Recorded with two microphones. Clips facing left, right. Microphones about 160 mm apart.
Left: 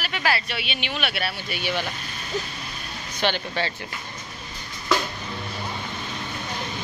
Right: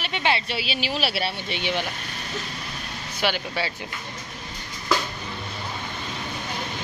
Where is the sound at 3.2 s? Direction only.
10° right (ahead or behind).